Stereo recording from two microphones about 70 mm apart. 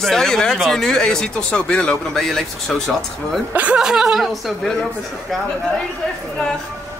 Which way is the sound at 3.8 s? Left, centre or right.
Centre.